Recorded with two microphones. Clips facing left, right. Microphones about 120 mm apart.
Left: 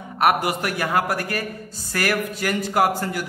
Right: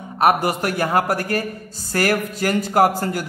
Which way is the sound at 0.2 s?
35° right (ahead or behind).